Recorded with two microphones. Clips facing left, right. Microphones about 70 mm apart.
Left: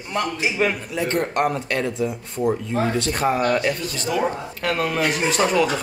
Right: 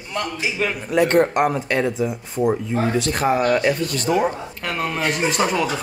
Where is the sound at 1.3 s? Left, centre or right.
Centre.